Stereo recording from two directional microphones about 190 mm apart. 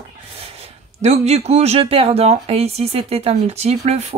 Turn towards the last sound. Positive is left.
turn(degrees=-35)  # may be behind; listen again after turning